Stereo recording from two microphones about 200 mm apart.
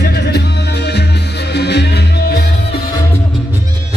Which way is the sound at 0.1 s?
55° left (ahead or behind).